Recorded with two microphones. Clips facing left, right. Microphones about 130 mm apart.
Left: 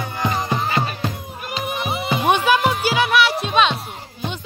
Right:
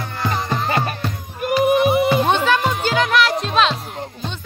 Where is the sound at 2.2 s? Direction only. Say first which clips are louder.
Left 1 dB; 10° left (ahead or behind).